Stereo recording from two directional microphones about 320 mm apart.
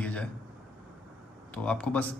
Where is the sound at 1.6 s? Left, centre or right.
Centre.